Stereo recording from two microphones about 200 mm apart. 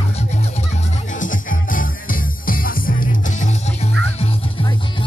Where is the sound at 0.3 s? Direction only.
35° left (ahead or behind).